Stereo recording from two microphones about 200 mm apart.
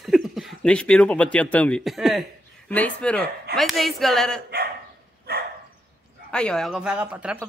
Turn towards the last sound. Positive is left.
turn(degrees=-5)  # may be behind; listen again after turning